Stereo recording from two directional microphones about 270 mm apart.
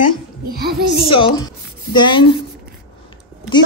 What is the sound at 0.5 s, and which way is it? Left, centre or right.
Speech, right.